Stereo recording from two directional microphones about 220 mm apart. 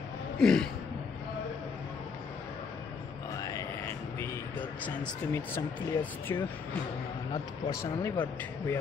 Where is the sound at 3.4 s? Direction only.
15° left (ahead or behind).